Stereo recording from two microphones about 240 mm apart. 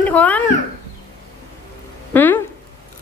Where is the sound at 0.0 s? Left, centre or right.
Centre.